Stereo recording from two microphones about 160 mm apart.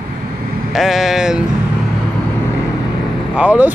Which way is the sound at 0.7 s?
Centre (ahead or behind).